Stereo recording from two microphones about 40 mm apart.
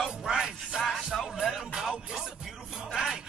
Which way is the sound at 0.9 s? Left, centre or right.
Centre.